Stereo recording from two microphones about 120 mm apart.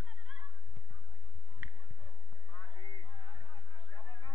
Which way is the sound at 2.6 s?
35° right (ahead or behind).